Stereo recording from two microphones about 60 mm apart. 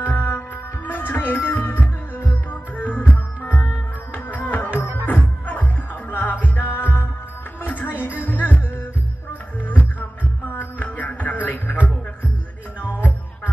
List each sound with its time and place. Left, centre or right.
0.0 s music: left
9.9 s music: left
12.8 s music: left